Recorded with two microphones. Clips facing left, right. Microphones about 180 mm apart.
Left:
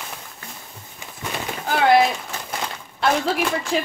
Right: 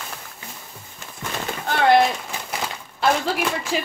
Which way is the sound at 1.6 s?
5° left (ahead or behind).